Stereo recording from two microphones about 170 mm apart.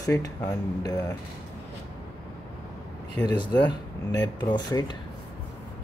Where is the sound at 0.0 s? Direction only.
20° left (ahead or behind).